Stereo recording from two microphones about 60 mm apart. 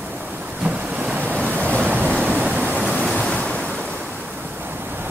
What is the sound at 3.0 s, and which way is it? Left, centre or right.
Waves, centre.